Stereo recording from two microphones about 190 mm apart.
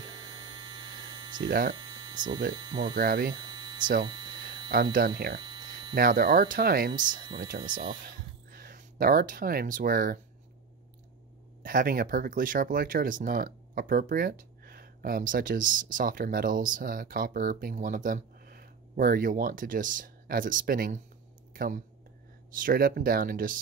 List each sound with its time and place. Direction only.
0.0 s hum: 25° right (ahead or behind)
2.5 s speech: 25° right (ahead or behind)
3.0 s speech: 55° right (ahead or behind)
3.3 s hum: 25° right (ahead or behind)
4.0 s a sound: 25° right (ahead or behind)
4.9 s speech: 55° right (ahead or behind)
5.4 s hum: 25° right (ahead or behind)
5.9 s speech: 50° right (ahead or behind)
6.5 s speech: 50° right (ahead or behind)
7.6 s speech: 25° right (ahead or behind)
8.5 s speech: 50° right (ahead or behind)
11.6 s speech: 50° right (ahead or behind)